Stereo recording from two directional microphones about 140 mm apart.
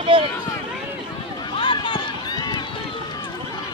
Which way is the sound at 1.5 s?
35° left (ahead or behind).